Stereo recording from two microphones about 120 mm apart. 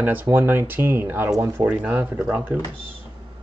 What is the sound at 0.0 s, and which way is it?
Speech, 15° right (ahead or behind).